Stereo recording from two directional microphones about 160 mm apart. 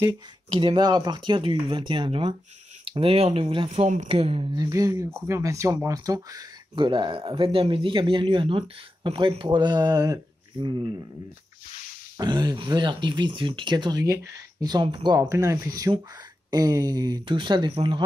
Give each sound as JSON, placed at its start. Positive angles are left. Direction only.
{"t": 0.6, "sound": "speech", "side_deg": -30}
{"t": 4.6, "sound": "speech", "side_deg": -20}
{"t": 12.2, "sound": "speech", "side_deg": -25}